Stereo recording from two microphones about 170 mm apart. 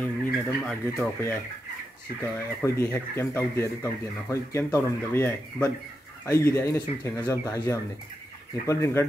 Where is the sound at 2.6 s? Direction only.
15° left (ahead or behind).